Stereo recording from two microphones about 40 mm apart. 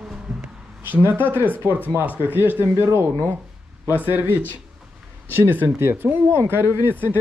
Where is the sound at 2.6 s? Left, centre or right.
Right.